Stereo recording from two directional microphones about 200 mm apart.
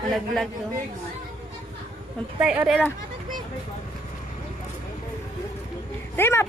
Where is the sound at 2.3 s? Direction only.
5° right (ahead or behind).